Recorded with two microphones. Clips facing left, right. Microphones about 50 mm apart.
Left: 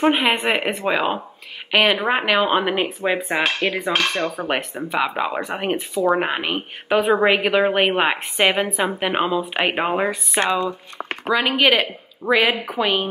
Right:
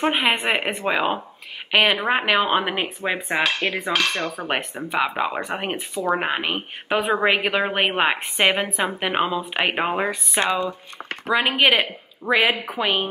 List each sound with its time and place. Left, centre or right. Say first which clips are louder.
0.0 s a woman's voice: left 3 dB; centre
3.4 s speech: left 2 dB; left
4.8 s speech: even; centre
10.4 s a woman's voice: left 2 dB; centre
11.2 s a woman's voice: left 1 dB; centre